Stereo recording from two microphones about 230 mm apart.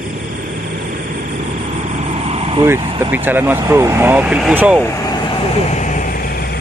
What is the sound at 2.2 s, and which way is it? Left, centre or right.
Vehicle, right.